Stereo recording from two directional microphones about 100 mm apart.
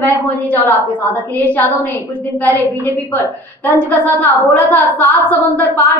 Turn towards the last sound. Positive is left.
turn(degrees=20)  # may be behind; listen again after turning